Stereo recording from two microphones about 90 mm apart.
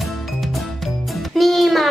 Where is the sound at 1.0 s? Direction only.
Centre (ahead or behind).